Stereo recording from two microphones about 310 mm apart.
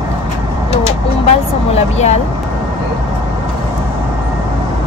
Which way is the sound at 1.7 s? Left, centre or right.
Left.